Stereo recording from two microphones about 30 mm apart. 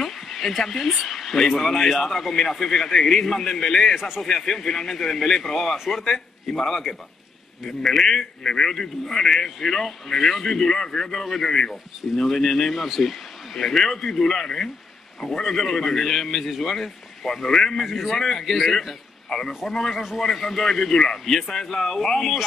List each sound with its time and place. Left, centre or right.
0.0 s speech: centre
3.9 s a man's voice: centre
4.5 s a man's voice: centre
8.1 s a man's voice: left
8.7 s a man's voice: centre
11.4 s speech: left
12.2 s a man's voice: centre
13.6 s a man's voice: centre
17.7 s speech: centre
18.1 s a man's voice: centre
18.4 s speech: centre
19.2 s a man's voice: centre
19.6 s a man's voice: centre